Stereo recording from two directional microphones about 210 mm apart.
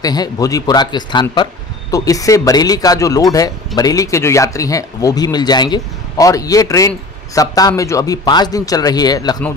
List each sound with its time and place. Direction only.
0.0 s speech: 20° left (ahead or behind)